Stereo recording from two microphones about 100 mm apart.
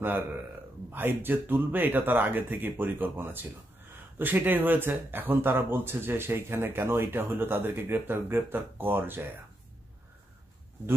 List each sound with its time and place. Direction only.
0.0 s speech: 20° right (ahead or behind)